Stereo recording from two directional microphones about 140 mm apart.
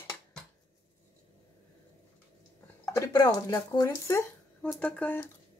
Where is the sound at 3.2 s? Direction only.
30° left (ahead or behind).